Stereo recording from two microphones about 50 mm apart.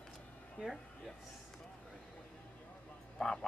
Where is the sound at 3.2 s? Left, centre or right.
Centre.